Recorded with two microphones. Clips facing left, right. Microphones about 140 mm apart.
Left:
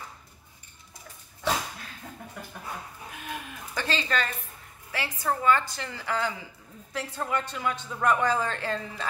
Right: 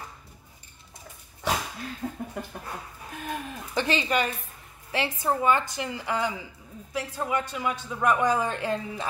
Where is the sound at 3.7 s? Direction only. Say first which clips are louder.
Right 4 dB; 15° right (ahead or behind).